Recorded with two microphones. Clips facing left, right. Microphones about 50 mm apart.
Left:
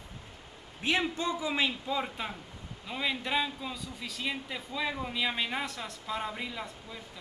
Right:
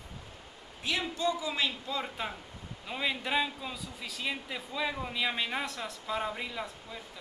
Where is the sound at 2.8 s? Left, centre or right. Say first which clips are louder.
Even; centre.